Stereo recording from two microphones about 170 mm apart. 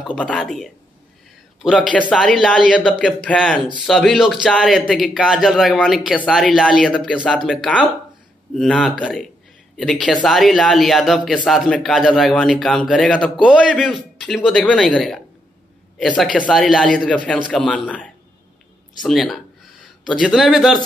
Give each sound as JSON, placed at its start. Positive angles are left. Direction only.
{"t": 0.0, "sound": "a man's voice", "side_deg": 5}
{"t": 13.4, "sound": "a man's voice", "side_deg": -5}
{"t": 13.7, "sound": "a man's voice", "side_deg": 5}